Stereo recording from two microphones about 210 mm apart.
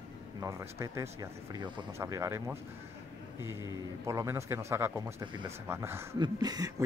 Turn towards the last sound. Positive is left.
turn(degrees=-20)  # may be behind; listen again after turning